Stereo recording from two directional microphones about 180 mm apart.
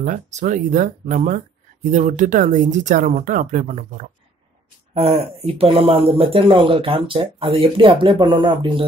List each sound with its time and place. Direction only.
0.0 s speech: 45° right (ahead or behind); by 8.8 s 30° right (ahead or behind)